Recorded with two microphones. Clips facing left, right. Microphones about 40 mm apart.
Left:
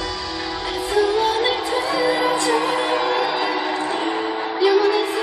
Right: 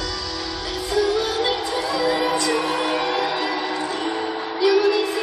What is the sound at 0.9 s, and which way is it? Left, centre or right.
Music, centre.